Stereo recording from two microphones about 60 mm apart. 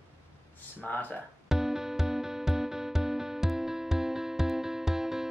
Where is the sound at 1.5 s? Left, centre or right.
Centre.